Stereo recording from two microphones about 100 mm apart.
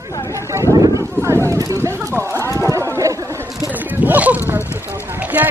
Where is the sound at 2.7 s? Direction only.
35° right (ahead or behind).